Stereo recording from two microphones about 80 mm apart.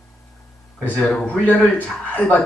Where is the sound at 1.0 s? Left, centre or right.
Centre.